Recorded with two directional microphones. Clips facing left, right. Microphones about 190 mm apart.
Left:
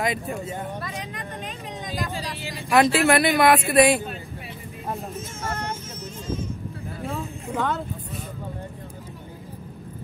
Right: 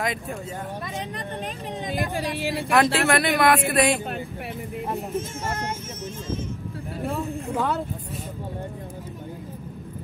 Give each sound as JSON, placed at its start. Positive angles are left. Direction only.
{"t": 0.0, "sound": "speech", "side_deg": 0}
{"t": 1.9, "sound": "speech", "side_deg": -55}
{"t": 2.7, "sound": "speech", "side_deg": 5}
{"t": 7.1, "sound": "speech", "side_deg": 0}